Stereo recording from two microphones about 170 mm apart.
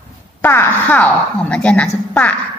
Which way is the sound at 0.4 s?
10° left (ahead or behind).